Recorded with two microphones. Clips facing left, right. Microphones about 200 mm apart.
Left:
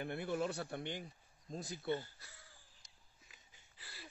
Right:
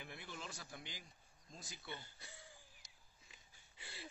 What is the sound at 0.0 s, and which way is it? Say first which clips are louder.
Speech: left 14 dB; 60° left (ahead or behind).